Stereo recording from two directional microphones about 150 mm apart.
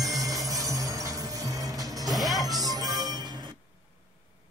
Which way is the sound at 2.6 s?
25° right (ahead or behind).